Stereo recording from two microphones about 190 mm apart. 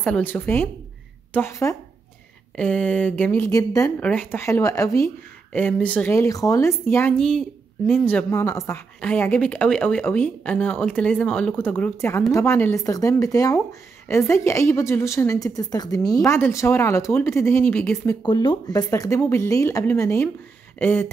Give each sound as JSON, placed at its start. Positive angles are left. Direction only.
{"t": 0.0, "sound": "speech", "side_deg": 10}
{"t": 18.2, "sound": "speech", "side_deg": 25}